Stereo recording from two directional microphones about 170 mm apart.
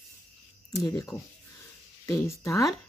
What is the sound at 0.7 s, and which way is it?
Speech, 20° left (ahead or behind).